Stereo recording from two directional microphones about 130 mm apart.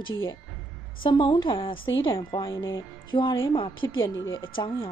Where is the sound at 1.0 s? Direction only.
35° left (ahead or behind).